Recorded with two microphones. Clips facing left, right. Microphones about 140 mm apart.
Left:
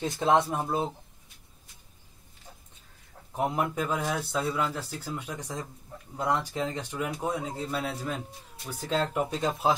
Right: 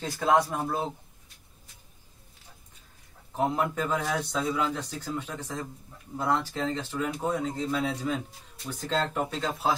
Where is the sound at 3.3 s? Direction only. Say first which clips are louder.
Right 1 dB; 15° left (ahead or behind).